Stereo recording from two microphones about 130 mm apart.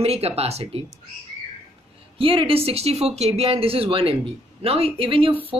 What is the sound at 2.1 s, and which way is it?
Speech, 45° right (ahead or behind).